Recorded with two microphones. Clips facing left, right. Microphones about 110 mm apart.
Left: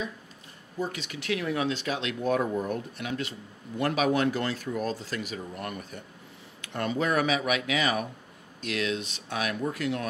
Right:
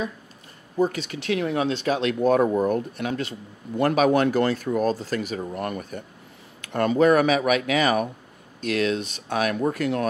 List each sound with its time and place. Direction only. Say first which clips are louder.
0.7 s speech: right 9 dB; 45° right (ahead or behind)
1.4 s speech: right 5 dB; 30° right (ahead or behind); by 10.0 s 50° right (ahead or behind)